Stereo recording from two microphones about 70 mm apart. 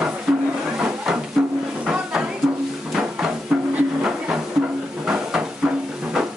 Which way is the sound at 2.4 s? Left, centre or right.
Centre.